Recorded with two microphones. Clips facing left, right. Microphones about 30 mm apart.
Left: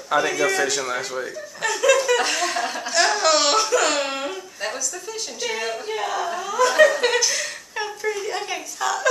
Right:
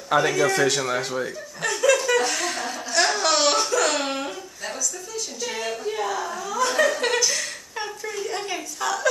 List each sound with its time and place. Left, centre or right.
0.1 s speech: centre
2.3 s speech: centre
2.9 s speech: centre
3.7 s laughter: centre
5.4 s speech: left
6.8 s a woman's voice: centre
8.8 s speech: centre